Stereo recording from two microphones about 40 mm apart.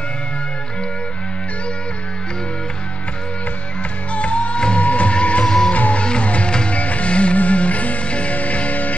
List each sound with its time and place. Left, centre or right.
4.1 s music: left
5.4 s music: centre
5.7 s music: left
6.8 s music: left